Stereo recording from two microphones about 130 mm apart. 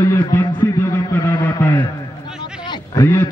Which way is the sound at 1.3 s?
35° left (ahead or behind).